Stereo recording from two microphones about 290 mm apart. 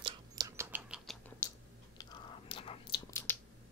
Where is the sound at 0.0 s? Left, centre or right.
Centre.